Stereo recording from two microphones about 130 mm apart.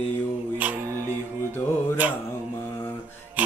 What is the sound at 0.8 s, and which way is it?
Music, 25° right (ahead or behind).